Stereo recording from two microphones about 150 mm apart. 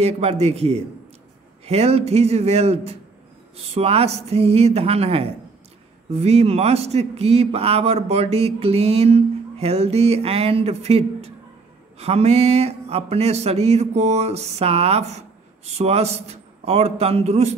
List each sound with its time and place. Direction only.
0.0 s a man's voice: 45° right (ahead or behind)